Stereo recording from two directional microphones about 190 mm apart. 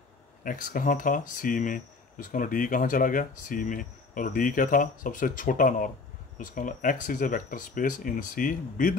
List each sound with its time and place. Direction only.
0.4 s speech: 45° left (ahead or behind)